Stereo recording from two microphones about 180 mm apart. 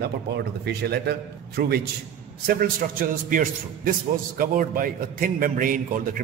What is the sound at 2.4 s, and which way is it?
A man's voice, 55° right (ahead or behind).